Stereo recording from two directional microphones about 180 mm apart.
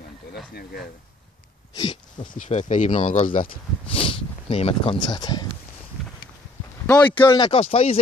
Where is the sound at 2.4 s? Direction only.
45° left (ahead or behind).